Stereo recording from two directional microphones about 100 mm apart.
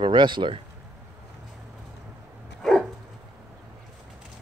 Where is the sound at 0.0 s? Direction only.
50° right (ahead or behind).